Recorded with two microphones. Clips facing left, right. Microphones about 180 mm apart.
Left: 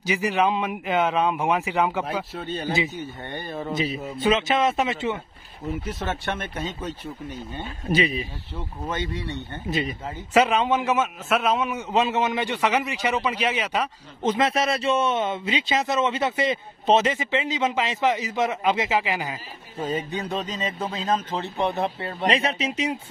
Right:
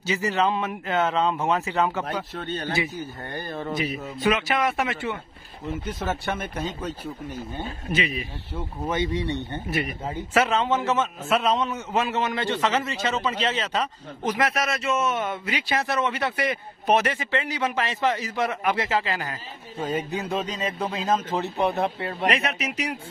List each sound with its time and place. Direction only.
0.0 s a man's voice: 15° left (ahead or behind)
3.7 s speech: 25° left (ahead or behind)
5.9 s a man's voice: centre (ahead or behind)
7.9 s speech: 35° left (ahead or behind)
8.8 s speech: 10° right (ahead or behind)
9.7 s speech: 20° left (ahead or behind)
14.2 s speech: 25° left (ahead or behind)
19.8 s a man's voice: centre (ahead or behind)
22.3 s speech: 30° left (ahead or behind)